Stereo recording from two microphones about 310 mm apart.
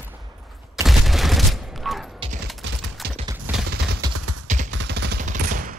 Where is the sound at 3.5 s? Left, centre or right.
Centre.